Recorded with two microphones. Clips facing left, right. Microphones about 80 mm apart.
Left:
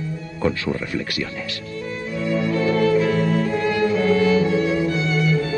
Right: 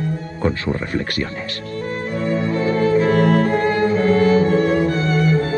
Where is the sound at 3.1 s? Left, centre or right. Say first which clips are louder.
Right 5 dB; right.